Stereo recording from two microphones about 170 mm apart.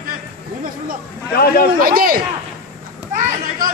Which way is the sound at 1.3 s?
65° left (ahead or behind).